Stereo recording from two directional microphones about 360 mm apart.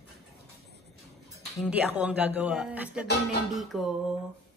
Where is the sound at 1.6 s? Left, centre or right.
Centre.